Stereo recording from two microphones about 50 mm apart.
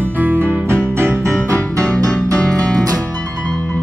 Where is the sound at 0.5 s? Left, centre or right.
Right.